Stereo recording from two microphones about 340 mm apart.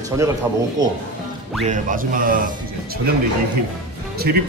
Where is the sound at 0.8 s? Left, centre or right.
Centre.